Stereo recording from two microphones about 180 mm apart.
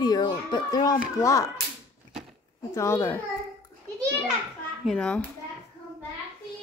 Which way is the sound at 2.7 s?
15° left (ahead or behind).